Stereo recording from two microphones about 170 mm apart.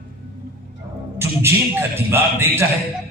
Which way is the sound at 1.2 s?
15° right (ahead or behind).